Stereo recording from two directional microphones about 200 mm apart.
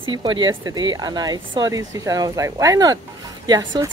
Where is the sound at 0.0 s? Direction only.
25° right (ahead or behind).